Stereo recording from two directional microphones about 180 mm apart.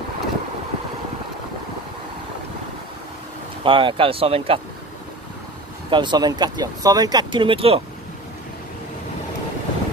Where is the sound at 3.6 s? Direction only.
30° right (ahead or behind).